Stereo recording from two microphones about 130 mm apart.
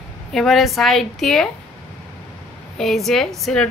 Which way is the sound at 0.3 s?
Centre (ahead or behind).